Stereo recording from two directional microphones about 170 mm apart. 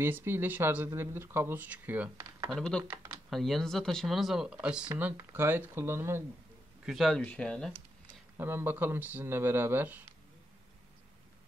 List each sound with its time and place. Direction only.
0.0 s speech: 15° right (ahead or behind)
2.5 s speech: 5° left (ahead or behind)
2.8 s speech: 15° right (ahead or behind)
3.3 s speech: centre (ahead or behind); by 6.2 s 15° right (ahead or behind)
6.9 s speech: centre (ahead or behind)
8.4 s speech: 10° right (ahead or behind)